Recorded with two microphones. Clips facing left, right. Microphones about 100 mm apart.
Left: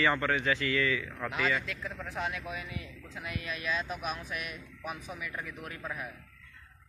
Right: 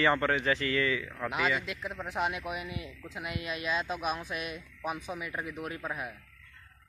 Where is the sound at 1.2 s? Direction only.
15° right (ahead or behind).